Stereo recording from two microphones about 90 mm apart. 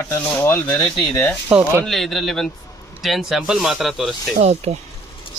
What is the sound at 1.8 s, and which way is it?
Speech, centre (ahead or behind).